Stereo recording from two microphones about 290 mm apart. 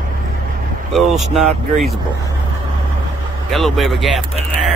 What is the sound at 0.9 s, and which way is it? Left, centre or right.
Speech, centre.